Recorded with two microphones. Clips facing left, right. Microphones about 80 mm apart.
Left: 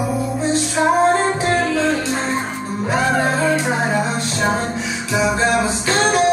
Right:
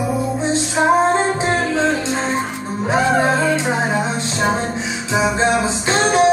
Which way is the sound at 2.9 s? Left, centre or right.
Right.